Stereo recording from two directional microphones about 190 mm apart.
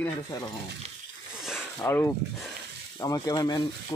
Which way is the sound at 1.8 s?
15° left (ahead or behind).